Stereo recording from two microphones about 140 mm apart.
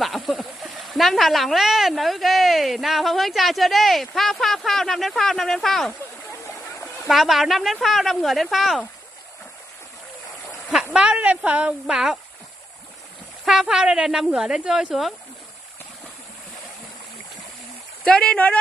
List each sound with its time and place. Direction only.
0.0 s speech: centre (ahead or behind)
6.5 s a sound: 20° left (ahead or behind)
7.1 s speech: centre (ahead or behind)
10.7 s a woman's voice: 5° right (ahead or behind)
13.5 s speech: 5° right (ahead or behind)
18.0 s speech: 5° left (ahead or behind)